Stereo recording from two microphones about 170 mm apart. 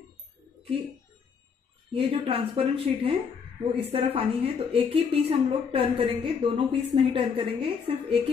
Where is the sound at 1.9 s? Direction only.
35° right (ahead or behind).